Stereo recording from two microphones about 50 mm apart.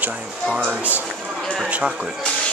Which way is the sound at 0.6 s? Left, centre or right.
Right.